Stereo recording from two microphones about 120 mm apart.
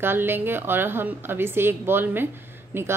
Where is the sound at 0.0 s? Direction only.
20° right (ahead or behind).